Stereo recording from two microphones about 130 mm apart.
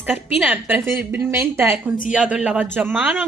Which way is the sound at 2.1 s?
5° right (ahead or behind).